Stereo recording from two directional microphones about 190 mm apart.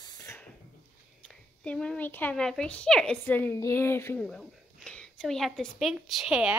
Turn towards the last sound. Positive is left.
turn(degrees=-5)  # may be behind; listen again after turning